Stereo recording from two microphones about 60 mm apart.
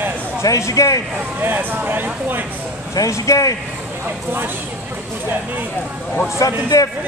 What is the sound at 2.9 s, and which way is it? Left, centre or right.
Speech, left.